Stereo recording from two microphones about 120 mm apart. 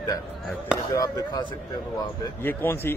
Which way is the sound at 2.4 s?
20° left (ahead or behind).